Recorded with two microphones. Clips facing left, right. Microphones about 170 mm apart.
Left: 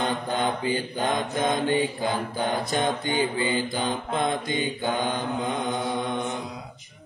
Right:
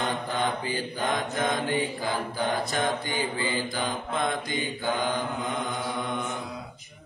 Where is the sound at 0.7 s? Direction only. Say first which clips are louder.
Left 3 dB; 25° left (ahead or behind).